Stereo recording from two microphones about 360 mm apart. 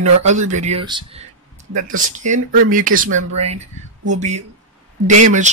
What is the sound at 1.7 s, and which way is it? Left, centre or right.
Speech, right.